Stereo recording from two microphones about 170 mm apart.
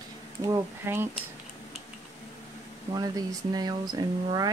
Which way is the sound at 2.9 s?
20° right (ahead or behind).